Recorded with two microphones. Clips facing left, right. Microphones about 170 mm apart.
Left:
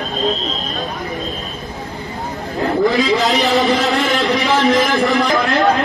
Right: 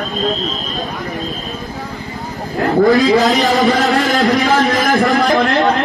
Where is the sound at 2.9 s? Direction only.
45° right (ahead or behind).